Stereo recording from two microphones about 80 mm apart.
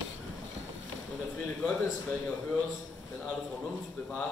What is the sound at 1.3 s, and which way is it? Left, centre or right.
A man's voice, centre.